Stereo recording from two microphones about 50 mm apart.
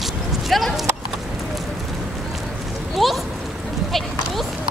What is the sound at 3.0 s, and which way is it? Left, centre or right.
Speech, centre.